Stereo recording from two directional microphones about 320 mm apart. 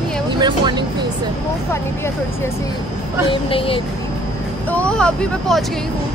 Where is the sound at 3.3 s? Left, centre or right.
Centre.